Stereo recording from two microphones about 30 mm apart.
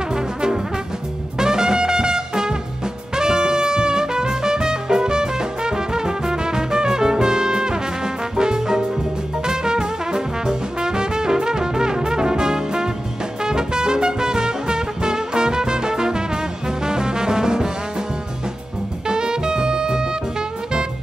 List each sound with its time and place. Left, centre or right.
0.1 s brass instrument: right
1.4 s music: right
9.4 s brass instrument: right
13.4 s music: right
19.0 s music: right